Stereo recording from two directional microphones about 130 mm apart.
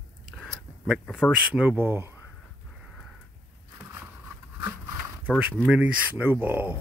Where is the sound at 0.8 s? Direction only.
Centre (ahead or behind).